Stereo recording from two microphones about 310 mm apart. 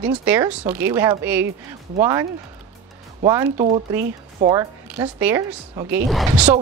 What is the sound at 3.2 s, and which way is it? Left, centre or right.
Speech, centre.